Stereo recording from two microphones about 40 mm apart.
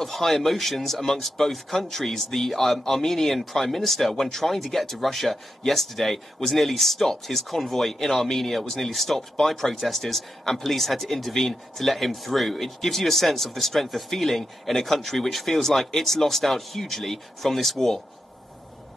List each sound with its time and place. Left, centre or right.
0.0 s speech: centre